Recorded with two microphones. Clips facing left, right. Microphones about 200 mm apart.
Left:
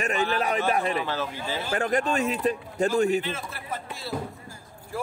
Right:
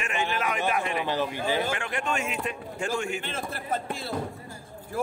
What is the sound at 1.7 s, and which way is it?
A man's voice, 40° left (ahead or behind).